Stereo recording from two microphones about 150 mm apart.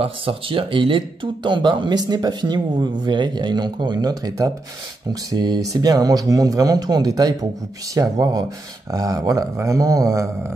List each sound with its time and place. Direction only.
0.0 s speech: 35° right (ahead or behind); by 10.5 s 20° right (ahead or behind)